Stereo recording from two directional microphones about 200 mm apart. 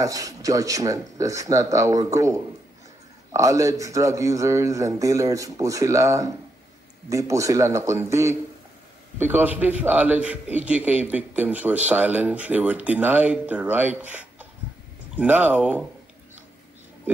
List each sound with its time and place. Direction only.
0.0 s a man's voice: 15° right (ahead or behind)